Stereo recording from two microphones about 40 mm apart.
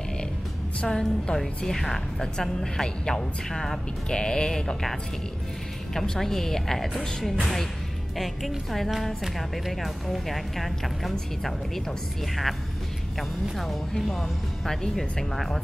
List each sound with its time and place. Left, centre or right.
0.8 s a woman's voice: centre
4.2 s sheep: centre
5.9 s a woman's voice: centre
13.6 s a woman's voice: centre